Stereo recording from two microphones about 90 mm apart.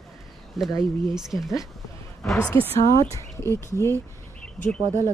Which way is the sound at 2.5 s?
30° left (ahead or behind).